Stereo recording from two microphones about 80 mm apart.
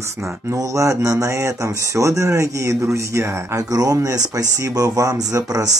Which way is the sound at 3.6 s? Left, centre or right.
Right.